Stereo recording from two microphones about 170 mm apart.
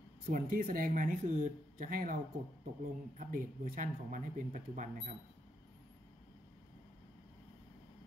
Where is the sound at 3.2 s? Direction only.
50° right (ahead or behind).